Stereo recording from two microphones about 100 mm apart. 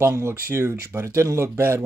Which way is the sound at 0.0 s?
25° right (ahead or behind).